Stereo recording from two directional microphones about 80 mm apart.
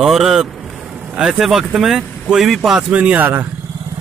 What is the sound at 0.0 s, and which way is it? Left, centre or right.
Speech, centre.